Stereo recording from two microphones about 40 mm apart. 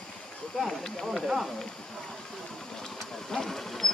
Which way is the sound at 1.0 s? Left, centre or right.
Centre.